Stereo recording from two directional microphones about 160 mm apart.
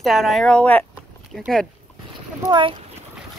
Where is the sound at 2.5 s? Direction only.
30° right (ahead or behind).